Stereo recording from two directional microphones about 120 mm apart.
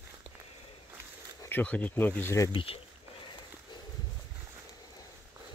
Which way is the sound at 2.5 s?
50° left (ahead or behind).